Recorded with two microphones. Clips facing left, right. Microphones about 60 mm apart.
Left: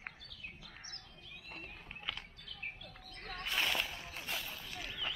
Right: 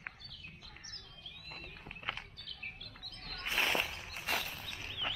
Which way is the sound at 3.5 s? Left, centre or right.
Right.